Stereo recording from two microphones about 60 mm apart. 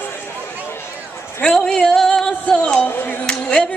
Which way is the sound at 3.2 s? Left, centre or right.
Centre.